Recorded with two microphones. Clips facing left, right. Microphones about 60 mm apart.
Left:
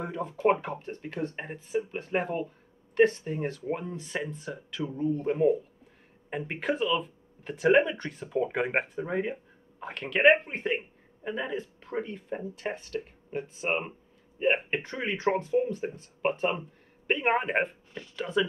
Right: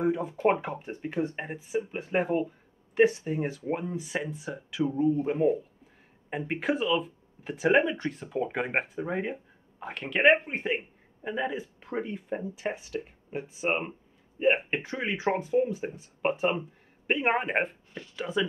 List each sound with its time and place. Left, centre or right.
0.0 s speech: centre